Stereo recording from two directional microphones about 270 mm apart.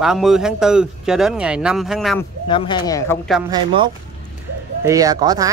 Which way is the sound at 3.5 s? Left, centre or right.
Centre.